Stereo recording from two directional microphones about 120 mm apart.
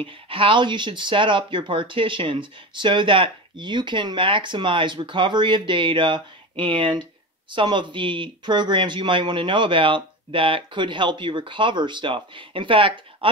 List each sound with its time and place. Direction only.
0.0 s speech: 45° right (ahead or behind)